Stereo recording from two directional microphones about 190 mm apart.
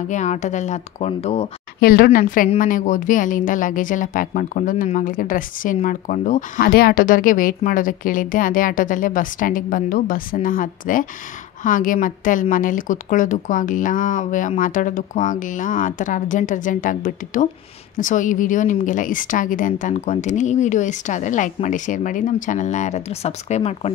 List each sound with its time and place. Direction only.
0.1 s a woman's voice: 40° left (ahead or behind)
1.8 s a woman's voice: 50° left (ahead or behind); by 23.9 s 35° left (ahead or behind)